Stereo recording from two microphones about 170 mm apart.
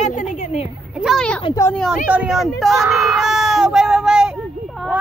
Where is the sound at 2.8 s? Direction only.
15° right (ahead or behind).